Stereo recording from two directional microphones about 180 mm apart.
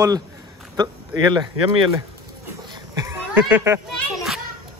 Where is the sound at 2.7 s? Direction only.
15° right (ahead or behind).